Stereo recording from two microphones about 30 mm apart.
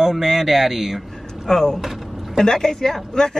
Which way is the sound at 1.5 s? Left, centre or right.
Left.